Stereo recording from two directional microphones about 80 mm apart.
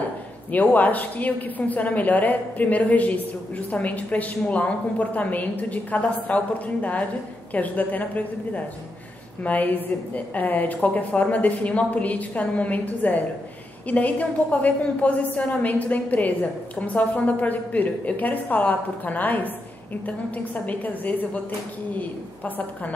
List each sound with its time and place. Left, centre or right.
0.5 s a woman's voice: left